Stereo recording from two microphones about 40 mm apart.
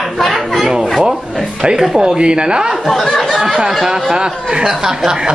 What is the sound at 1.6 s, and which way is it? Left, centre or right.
Speech, centre.